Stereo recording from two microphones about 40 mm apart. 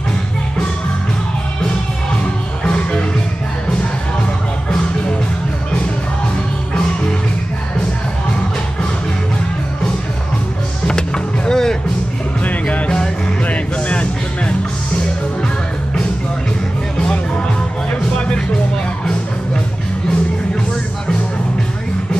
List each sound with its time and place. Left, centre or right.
2.6 s music: left
10.9 s music: centre
12.4 s music: left